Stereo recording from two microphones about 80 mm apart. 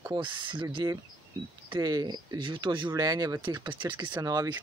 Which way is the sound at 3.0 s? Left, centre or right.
Right.